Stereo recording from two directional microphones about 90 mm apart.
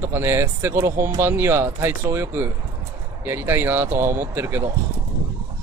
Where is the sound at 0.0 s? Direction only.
25° right (ahead or behind).